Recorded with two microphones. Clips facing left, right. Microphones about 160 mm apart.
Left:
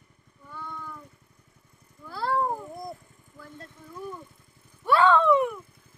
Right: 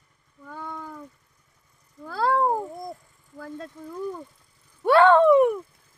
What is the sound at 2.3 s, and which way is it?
Cat, 45° right (ahead or behind).